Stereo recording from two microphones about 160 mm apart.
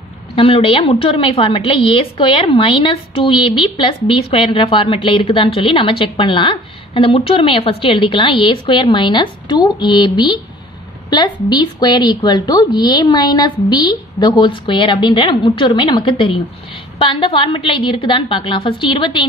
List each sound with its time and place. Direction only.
0.4 s a woman's voice: 35° left (ahead or behind)